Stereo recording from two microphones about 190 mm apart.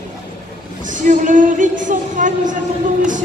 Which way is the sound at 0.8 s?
45° right (ahead or behind).